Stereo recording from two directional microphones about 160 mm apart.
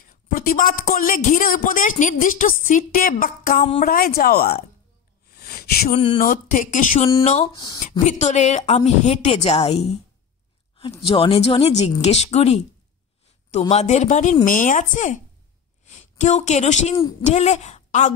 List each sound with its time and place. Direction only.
0.3 s a woman's voice: 65° left (ahead or behind)
5.3 s a sound: 75° left (ahead or behind)
5.9 s speech: 30° left (ahead or behind)
6.2 s a woman's voice: 55° left (ahead or behind)
7.5 s speech: 25° left (ahead or behind)
8.0 s a woman's voice: 50° left (ahead or behind)
11.1 s a woman's voice: 35° left (ahead or behind)